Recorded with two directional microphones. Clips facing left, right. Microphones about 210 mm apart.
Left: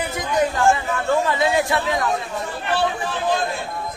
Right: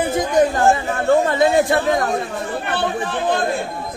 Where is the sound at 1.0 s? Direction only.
50° right (ahead or behind).